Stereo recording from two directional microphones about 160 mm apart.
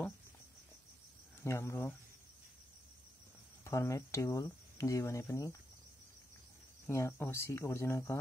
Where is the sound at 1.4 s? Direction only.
15° left (ahead or behind).